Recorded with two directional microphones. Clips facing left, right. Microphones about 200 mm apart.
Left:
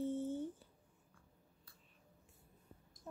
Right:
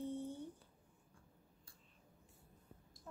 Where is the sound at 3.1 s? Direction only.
20° left (ahead or behind).